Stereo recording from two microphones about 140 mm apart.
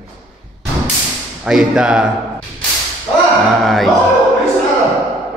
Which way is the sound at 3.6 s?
Centre (ahead or behind).